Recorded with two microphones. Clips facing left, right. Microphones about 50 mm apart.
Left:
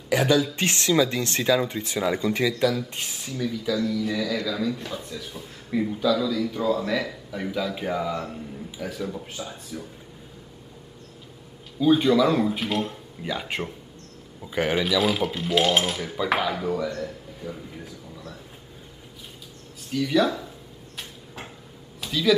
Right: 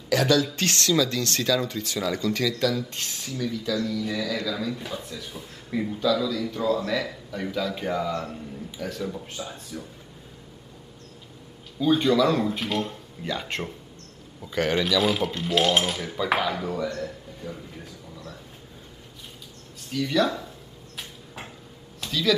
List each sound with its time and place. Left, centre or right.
0.1 s speech: centre
11.8 s speech: centre
19.9 s speech: centre
22.0 s a sound: centre